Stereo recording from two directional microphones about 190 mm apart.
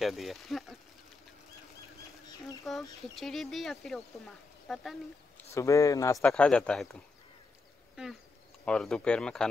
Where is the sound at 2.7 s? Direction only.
Centre (ahead or behind).